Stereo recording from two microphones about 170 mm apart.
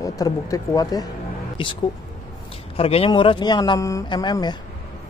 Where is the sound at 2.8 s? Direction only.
35° left (ahead or behind).